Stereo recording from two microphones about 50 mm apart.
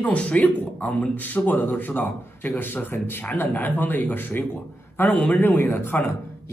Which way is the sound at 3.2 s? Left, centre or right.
Left.